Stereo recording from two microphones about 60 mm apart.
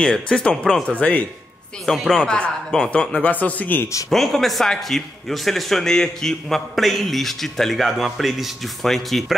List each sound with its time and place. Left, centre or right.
0.0 s speech: centre
0.8 s speech: left
1.9 s speech: centre
2.7 s speech: left
4.1 s a man's voice: centre